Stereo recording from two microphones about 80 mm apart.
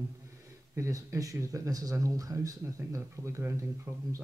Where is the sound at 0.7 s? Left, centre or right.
Right.